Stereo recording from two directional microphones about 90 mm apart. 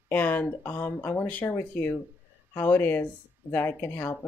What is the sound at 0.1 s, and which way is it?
Speech, 20° left (ahead or behind).